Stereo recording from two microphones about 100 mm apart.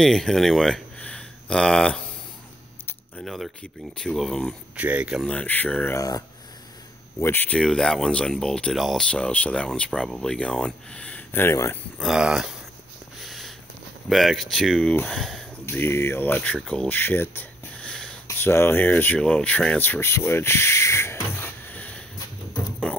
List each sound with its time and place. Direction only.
0.0 s speech: 5° left (ahead or behind)
3.3 s speech: centre (ahead or behind)
4.7 s speech: 15° right (ahead or behind)
5.2 s speech: 10° left (ahead or behind)
5.9 s speech: 35° left (ahead or behind)
7.2 s speech: 20° left (ahead or behind)
7.5 s speech: 5° left (ahead or behind)
12.0 s speech: 5° right (ahead or behind)
13.2 s a sound: centre (ahead or behind)
14.0 s speech: centre (ahead or behind)
15.6 s speech: 25° left (ahead or behind)
17.7 s wheeze: 10° left (ahead or behind)
18.2 s speech: 25° left (ahead or behind)